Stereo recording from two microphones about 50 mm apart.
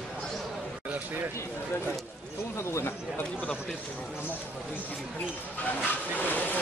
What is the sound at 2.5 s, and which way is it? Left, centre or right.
Chatter, left.